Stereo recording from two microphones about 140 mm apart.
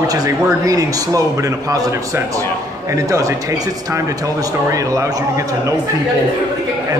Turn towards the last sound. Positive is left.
turn(degrees=-25)  # may be behind; listen again after turning